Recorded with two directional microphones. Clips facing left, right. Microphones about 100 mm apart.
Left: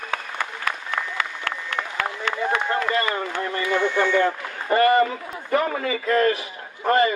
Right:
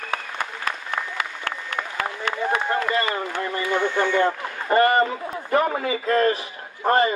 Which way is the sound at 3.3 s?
15° right (ahead or behind).